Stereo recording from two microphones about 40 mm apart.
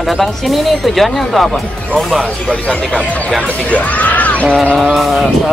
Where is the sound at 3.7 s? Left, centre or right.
Left.